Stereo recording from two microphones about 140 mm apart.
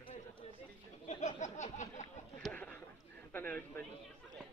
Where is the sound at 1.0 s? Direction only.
60° left (ahead or behind).